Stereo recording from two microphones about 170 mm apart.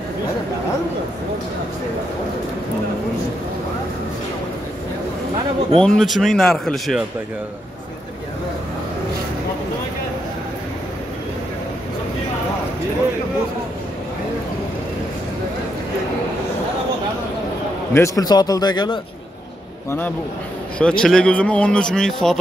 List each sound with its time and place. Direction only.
5.8 s speech: 5° left (ahead or behind)
17.9 s speech: 20° left (ahead or behind)
20.8 s speech: 5° left (ahead or behind)